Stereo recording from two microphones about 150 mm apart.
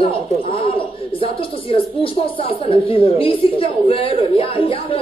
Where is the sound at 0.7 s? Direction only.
35° left (ahead or behind).